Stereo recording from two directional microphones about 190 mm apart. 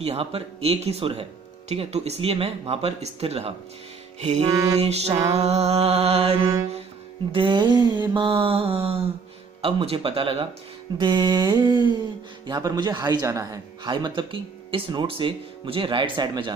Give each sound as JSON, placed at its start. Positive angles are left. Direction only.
{"t": 0.0, "sound": "mantra", "side_deg": -30}
{"t": 7.3, "sound": "a man's voice", "side_deg": -25}